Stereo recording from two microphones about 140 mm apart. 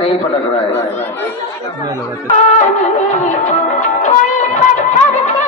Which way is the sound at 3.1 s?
60° left (ahead or behind).